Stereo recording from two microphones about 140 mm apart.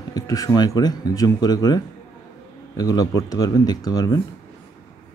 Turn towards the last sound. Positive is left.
turn(degrees=25)  # may be behind; listen again after turning